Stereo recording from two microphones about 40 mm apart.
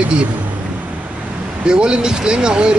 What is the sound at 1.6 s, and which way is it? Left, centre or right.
Speech, right.